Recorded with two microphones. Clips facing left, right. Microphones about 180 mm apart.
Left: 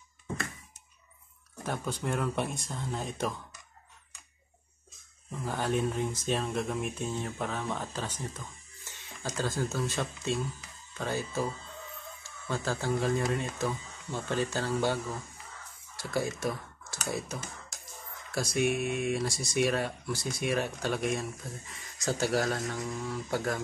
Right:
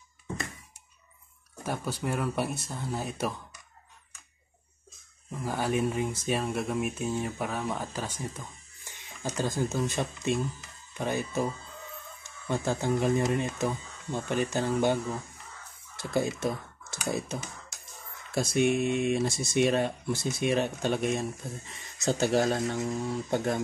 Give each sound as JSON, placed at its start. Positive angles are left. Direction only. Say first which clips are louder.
{"t": 1.6, "sound": "speech", "louder": "right 2 dB", "side_deg": -10}
{"t": 5.4, "sound": "speech", "louder": "right 2 dB", "side_deg": -10}
{"t": 16.0, "sound": "speech", "louder": "right 3 dB", "side_deg": -25}